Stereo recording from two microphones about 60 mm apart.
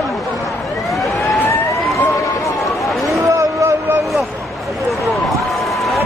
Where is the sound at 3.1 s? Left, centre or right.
Right.